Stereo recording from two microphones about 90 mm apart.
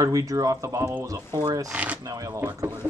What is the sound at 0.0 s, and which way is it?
A man's voice, 40° right (ahead or behind).